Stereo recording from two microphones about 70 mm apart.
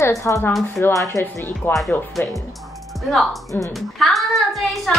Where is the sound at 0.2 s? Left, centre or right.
Left.